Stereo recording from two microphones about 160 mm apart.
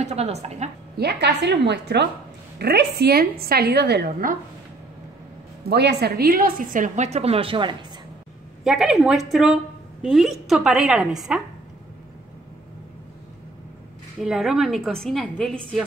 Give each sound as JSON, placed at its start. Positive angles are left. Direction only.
{"t": 0.0, "sound": "a woman's voice", "side_deg": -45}
{"t": 0.9, "sound": "a woman's voice", "side_deg": -90}
{"t": 5.7, "sound": "a woman's voice", "side_deg": -90}
{"t": 8.6, "sound": "a woman's voice", "side_deg": 0}
{"t": 14.2, "sound": "a woman's voice", "side_deg": 0}